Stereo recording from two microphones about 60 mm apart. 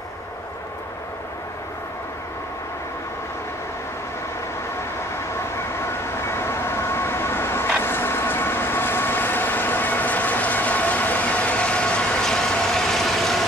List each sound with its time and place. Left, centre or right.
5.8 s train: left
7.8 s vehicle: left; by 13.5 s centre